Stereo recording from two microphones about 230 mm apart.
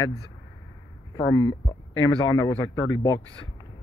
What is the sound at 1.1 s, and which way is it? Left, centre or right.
Speech, centre.